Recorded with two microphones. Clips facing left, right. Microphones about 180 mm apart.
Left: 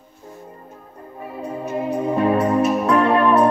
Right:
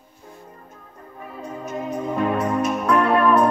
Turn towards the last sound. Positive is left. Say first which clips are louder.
# left 2 dB
turn(degrees=0)  # may be behind; listen again after turning